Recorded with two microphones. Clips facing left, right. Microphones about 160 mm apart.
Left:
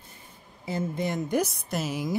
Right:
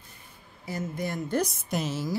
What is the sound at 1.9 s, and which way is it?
Speech, 15° left (ahead or behind).